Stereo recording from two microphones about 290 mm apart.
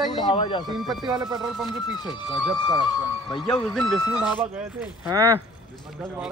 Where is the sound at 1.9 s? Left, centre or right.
Centre.